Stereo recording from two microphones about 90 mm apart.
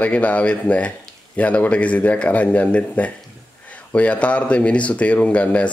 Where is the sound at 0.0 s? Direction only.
15° left (ahead or behind).